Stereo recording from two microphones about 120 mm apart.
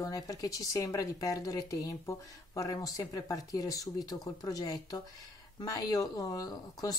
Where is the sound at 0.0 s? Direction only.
30° left (ahead or behind).